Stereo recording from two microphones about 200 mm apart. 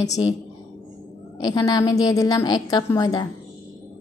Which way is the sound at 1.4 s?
20° left (ahead or behind).